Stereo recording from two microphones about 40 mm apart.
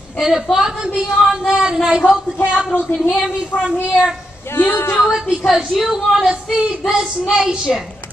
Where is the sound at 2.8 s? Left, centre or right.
Left.